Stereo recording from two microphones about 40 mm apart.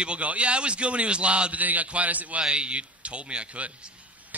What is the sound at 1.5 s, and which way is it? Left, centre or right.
Speech, right.